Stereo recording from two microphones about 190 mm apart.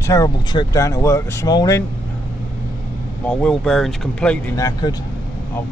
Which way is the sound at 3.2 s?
5° left (ahead or behind).